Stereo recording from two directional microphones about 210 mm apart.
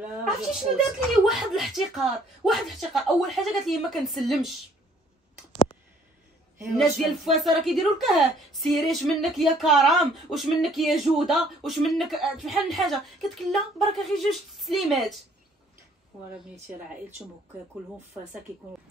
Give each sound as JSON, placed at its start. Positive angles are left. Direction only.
{"t": 0.2, "sound": "speech", "side_deg": 0}
{"t": 6.8, "sound": "speech", "side_deg": 0}